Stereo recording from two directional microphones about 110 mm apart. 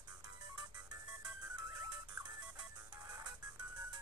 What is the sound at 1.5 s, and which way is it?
Music, 35° right (ahead or behind).